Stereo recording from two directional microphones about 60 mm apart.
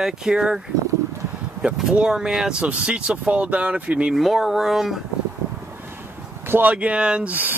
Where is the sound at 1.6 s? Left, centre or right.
Centre.